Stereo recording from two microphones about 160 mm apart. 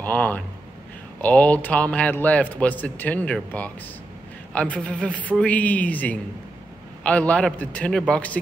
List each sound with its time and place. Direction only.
0.0 s a man's voice: 10° left (ahead or behind)